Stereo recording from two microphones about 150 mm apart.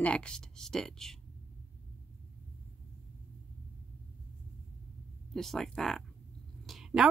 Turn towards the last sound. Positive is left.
turn(degrees=0)  # may be behind; listen again after turning